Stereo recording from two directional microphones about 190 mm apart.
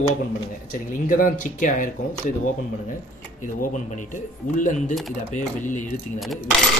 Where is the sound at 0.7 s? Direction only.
45° left (ahead or behind).